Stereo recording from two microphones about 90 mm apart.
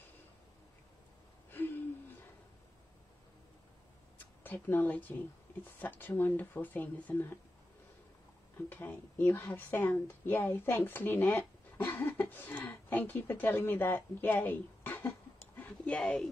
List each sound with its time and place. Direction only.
1.5 s a sound: 20° left (ahead or behind)
4.4 s speech: 20° left (ahead or behind)
8.6 s speech: 20° left (ahead or behind)